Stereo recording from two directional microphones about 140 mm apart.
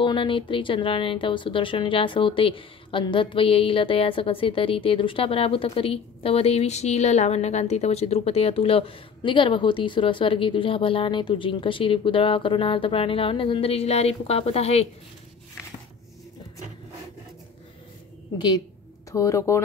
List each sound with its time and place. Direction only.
0.0 s a woman's voice: 35° left (ahead or behind)
19.1 s speech: 20° left (ahead or behind)